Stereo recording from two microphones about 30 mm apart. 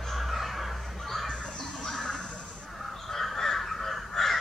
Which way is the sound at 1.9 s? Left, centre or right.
Left.